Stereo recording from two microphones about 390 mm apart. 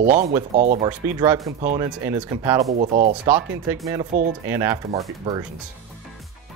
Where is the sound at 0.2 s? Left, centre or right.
Centre.